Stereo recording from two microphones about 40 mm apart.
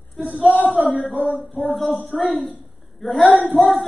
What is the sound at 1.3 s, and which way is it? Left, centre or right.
Speech, right.